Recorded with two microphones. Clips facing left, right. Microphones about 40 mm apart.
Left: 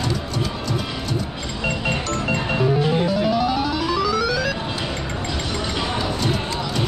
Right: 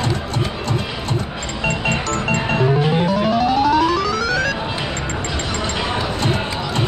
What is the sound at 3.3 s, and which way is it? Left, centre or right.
Music, right.